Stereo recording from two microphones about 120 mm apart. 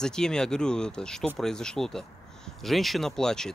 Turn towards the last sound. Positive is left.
turn(degrees=5)  # may be behind; listen again after turning